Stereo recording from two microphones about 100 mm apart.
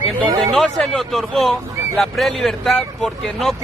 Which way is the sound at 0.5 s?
Centre (ahead or behind).